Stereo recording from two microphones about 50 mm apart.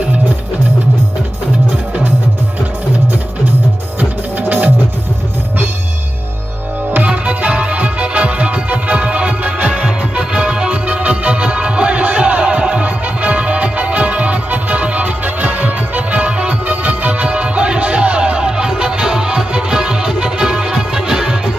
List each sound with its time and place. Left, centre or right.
4.0 s music: right
7.1 s music: right